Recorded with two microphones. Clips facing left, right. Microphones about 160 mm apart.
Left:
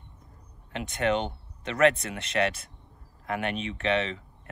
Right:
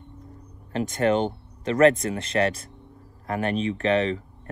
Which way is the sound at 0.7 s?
40° right (ahead or behind).